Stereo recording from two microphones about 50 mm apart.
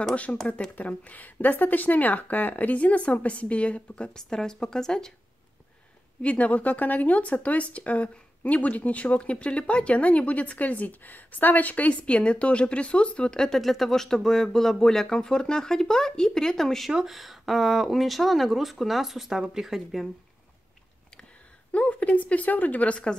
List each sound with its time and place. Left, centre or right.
0.1 s speech: left; by 5.1 s centre
6.2 s speech: left
13.6 s speech: centre
16.9 s speech: centre
21.7 s a woman's voice: left